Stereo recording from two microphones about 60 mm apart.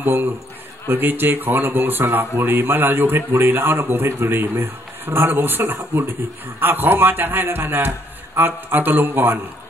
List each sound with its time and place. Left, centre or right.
0.0 s a man's voice: right